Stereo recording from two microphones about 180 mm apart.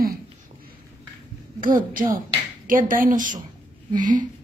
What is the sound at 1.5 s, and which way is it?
Speech, 50° right (ahead or behind).